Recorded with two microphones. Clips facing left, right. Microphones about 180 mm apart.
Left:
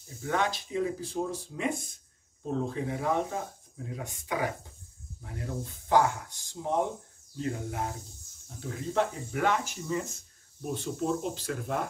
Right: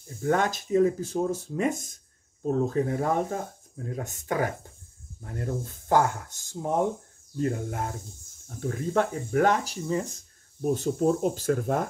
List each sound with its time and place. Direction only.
0.2 s speech: 45° right (ahead or behind)